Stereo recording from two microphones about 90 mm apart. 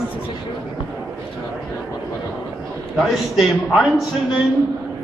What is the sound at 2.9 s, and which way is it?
A man's voice, centre (ahead or behind).